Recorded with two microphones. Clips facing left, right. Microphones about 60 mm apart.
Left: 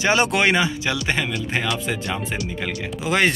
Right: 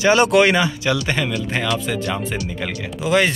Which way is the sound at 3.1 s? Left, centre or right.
Left.